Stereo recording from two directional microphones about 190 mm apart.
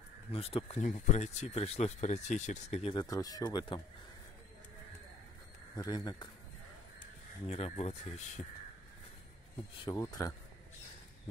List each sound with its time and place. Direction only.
0.3 s speech: 30° left (ahead or behind)
2.9 s speech: 20° left (ahead or behind)
5.8 s speech: 20° left (ahead or behind)
7.0 s speech: 35° left (ahead or behind)
9.8 s speech: 20° left (ahead or behind)